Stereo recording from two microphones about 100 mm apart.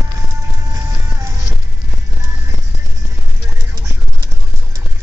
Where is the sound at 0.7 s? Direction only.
35° right (ahead or behind).